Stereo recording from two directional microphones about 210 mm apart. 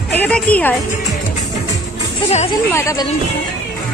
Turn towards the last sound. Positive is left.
turn(degrees=15)  # may be behind; listen again after turning